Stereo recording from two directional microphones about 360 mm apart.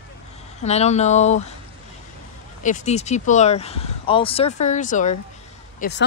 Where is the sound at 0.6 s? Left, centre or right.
Centre.